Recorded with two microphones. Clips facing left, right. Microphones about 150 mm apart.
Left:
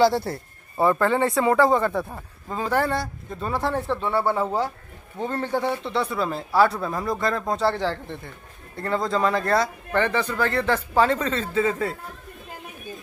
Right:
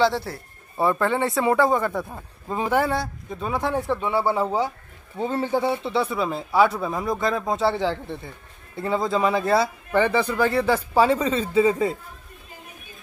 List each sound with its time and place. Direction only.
0.0 s speech: 15° left (ahead or behind)
1.4 s speech: 15° right (ahead or behind)
1.9 s speech: centre (ahead or behind)
2.4 s speech: 15° right (ahead or behind)
2.8 s speech: centre (ahead or behind)